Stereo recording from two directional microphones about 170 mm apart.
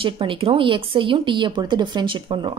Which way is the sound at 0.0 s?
30° right (ahead or behind).